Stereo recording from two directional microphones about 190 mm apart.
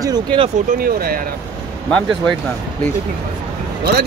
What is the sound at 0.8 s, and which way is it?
Speech, 50° right (ahead or behind).